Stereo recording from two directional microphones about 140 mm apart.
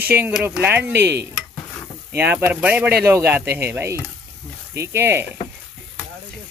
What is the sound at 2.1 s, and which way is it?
Speech, 15° right (ahead or behind).